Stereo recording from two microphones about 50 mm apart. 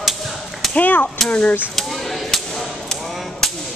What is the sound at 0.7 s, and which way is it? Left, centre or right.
Speech, left.